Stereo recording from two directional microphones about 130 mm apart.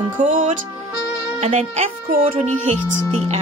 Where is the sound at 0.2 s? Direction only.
80° right.